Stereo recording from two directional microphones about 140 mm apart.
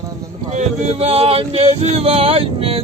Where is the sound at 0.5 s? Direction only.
50° right (ahead or behind).